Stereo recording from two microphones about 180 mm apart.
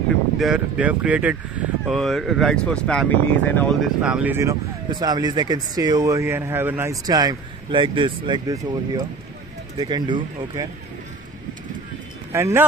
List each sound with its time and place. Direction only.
0.4 s speech: 5° right (ahead or behind)
4.0 s speech: 5° right (ahead or behind); by 10.7 s 25° right (ahead or behind)
12.3 s speech: 15° right (ahead or behind)